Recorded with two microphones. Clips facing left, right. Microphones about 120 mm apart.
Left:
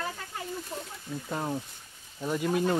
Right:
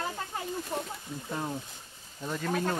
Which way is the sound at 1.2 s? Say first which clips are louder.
Left 2 dB; 15° left (ahead or behind).